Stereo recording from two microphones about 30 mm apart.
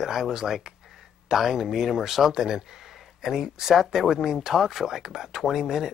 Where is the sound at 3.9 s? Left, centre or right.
Centre.